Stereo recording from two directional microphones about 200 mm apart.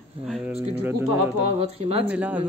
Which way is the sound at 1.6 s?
30° right (ahead or behind).